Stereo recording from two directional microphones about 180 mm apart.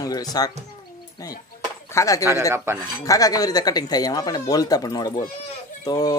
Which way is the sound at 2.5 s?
15° right (ahead or behind).